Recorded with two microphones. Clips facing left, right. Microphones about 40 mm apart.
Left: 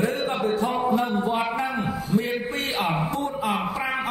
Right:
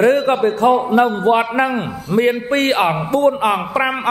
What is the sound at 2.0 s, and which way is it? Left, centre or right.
A man's voice, right.